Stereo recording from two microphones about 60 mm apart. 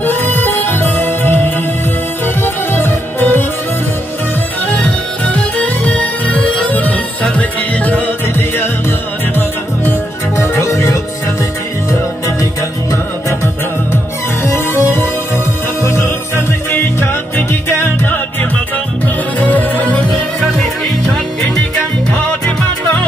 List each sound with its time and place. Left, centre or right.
0.0 s music: left
4.6 s music: left
10.3 s music: left
14.4 s music: left
19.4 s music: left
20.3 s music: centre